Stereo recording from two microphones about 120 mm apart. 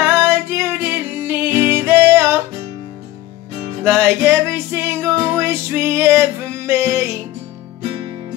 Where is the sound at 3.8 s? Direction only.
20° right (ahead or behind).